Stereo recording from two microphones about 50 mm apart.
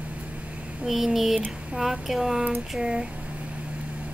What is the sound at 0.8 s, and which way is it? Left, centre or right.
Speech, centre.